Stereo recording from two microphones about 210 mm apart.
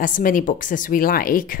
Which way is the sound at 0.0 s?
40° left (ahead or behind).